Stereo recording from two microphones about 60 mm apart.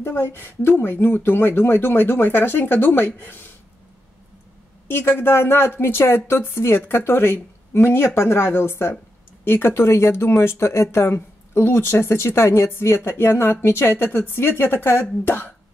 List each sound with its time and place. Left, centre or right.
0.0 s a woman's voice: left
4.8 s a woman's voice: left